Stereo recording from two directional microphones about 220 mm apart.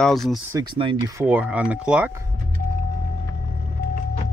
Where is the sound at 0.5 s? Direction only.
20° right (ahead or behind).